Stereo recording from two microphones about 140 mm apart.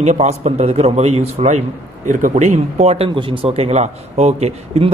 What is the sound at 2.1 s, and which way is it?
Speech, 65° right (ahead or behind).